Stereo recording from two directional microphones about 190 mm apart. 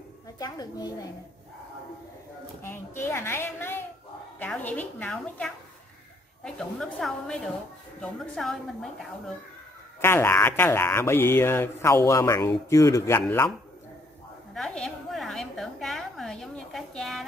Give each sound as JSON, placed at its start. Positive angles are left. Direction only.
{"t": 0.4, "sound": "a woman's voice", "side_deg": 20}
{"t": 2.6, "sound": "a woman's voice", "side_deg": 15}
{"t": 10.0, "sound": "speech", "side_deg": 10}
{"t": 14.5, "sound": "a sound", "side_deg": 5}